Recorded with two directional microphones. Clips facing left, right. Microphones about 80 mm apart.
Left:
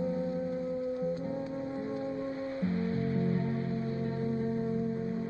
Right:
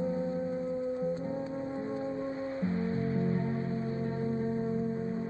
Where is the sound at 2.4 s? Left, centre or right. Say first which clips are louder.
Even; centre.